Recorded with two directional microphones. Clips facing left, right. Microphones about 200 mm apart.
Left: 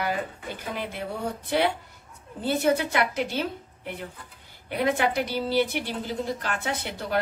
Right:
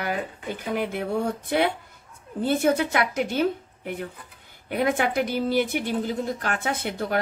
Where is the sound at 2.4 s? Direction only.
50° right (ahead or behind).